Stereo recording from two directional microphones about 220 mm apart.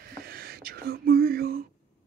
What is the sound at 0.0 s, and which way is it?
Whispering, 45° right (ahead or behind).